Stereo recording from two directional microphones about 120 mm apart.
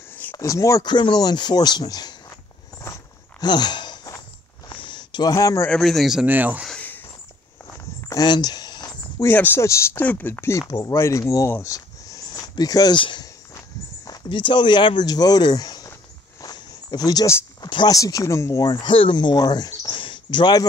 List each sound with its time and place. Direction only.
0.4 s speech: 25° left (ahead or behind)
0.8 s speech: 40° left (ahead or behind)
2.8 s walk: 30° left (ahead or behind)
4.6 s a sound: 40° left (ahead or behind)
5.3 s speech: 25° left (ahead or behind)
5.7 s a man's voice: centre (ahead or behind)
6.2 s speech: 15° right (ahead or behind)
8.1 s a sound: 35° left (ahead or behind)
9.2 s speech: 15° left (ahead or behind)
18.9 s speech: 45° left (ahead or behind)